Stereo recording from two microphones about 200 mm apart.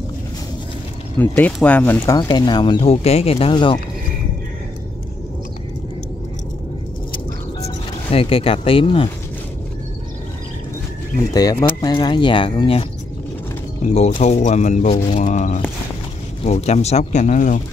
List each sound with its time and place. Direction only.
1.1 s speech: 10° left (ahead or behind)
2.1 s speech: 20° left (ahead or behind)
7.6 s speech: 30° left (ahead or behind)
11.8 s speech: 20° left (ahead or behind)
13.8 s speech: 35° left (ahead or behind)